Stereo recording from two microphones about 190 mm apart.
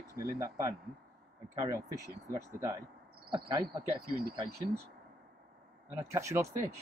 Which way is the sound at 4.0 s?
55° right (ahead or behind).